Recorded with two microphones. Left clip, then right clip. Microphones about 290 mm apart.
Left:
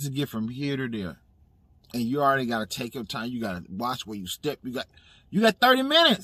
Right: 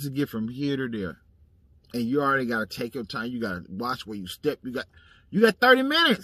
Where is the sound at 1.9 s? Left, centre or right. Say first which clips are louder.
Left 1 dB; left.